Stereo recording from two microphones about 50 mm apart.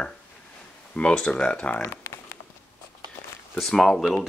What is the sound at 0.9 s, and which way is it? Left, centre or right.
Speech, left.